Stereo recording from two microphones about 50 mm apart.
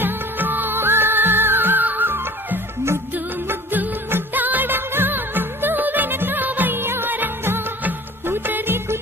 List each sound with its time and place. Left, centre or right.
0.0 s music: right
3.4 s music: right